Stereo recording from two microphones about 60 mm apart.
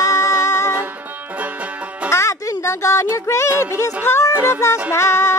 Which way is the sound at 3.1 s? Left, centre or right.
Left.